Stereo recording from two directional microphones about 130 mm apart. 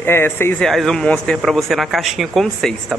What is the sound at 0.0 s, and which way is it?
Speech, 15° left (ahead or behind).